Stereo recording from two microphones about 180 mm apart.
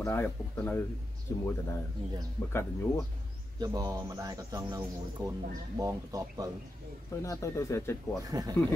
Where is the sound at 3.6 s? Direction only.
20° right (ahead or behind).